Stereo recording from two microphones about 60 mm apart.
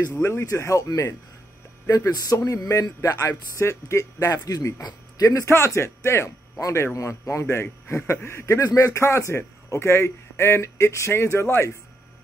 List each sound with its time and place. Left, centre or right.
0.2 s speech: left
1.9 s a man's voice: left
3.5 s speech: left
5.4 s a man's voice: left
8.6 s a man's voice: left
8.9 s a man's voice: left